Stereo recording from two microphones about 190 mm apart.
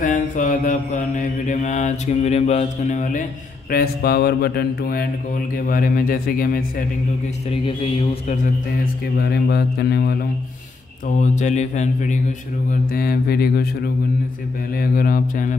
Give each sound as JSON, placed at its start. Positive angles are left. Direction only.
{"t": 0.0, "sound": "mantra", "side_deg": 40}
{"t": 3.7, "sound": "speech", "side_deg": 55}
{"t": 7.6, "sound": "mantra", "side_deg": 30}
{"t": 8.8, "sound": "speech", "side_deg": 55}
{"t": 11.1, "sound": "mantra", "side_deg": 40}
{"t": 12.9, "sound": "speech", "side_deg": 50}
{"t": 14.8, "sound": "speech", "side_deg": 50}